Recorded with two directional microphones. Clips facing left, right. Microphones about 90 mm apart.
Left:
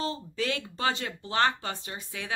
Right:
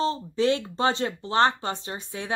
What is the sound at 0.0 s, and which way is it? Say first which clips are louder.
Speech: right 8 dB; 30° right (ahead or behind).